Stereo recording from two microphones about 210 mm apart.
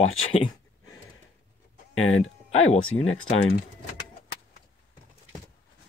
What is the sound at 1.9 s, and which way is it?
Speech, 80° left.